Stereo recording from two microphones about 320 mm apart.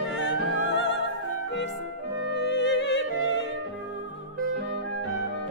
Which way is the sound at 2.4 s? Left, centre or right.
Left.